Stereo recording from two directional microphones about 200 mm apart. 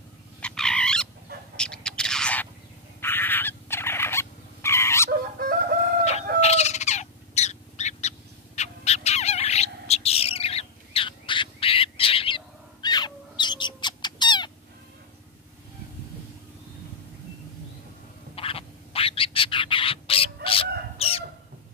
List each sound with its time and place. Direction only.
0.4 s frog: 5° left (ahead or behind)
1.6 s a sound: 5° left (ahead or behind)
5.4 s chicken: 45° right (ahead or behind)
6.4 s owl: 35° left (ahead or behind)
18.3 s bird: 30° left (ahead or behind)